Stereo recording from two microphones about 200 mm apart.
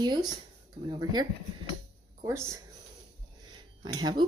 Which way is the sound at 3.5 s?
20° right (ahead or behind).